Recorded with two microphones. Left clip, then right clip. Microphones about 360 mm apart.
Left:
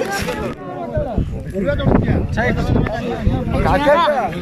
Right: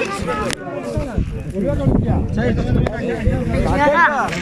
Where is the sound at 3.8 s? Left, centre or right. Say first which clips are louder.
Right 1 dB; centre.